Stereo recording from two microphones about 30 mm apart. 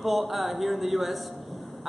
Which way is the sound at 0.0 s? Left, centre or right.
Centre.